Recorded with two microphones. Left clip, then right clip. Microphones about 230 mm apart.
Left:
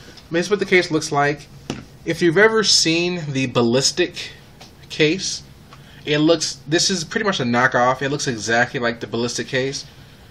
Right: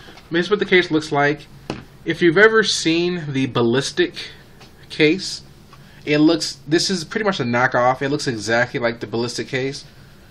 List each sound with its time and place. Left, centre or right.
0.3 s speech: centre